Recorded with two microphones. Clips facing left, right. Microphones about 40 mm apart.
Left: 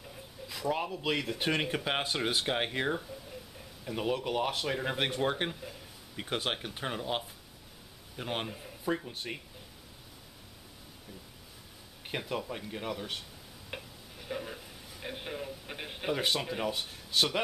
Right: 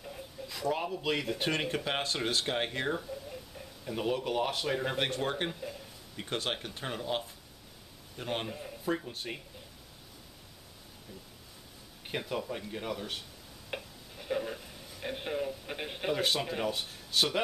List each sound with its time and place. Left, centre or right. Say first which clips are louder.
0.5 s speech: even; centre
12.1 s speech: even; centre
13.7 s a sound: right 3 dB; centre
16.2 s speech: even; centre